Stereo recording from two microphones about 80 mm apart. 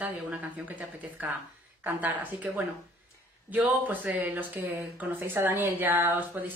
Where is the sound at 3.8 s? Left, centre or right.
Right.